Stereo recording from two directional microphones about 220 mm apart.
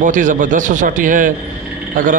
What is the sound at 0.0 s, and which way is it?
A man's voice, 35° right (ahead or behind).